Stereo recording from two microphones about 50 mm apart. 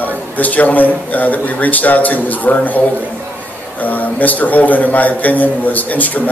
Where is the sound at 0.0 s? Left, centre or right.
Left.